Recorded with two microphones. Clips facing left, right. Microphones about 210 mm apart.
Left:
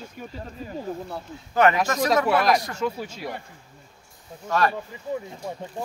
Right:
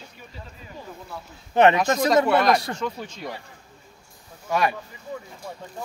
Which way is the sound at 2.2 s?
5° left (ahead or behind).